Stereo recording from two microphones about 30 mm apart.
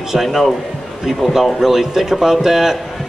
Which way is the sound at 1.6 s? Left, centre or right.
Centre.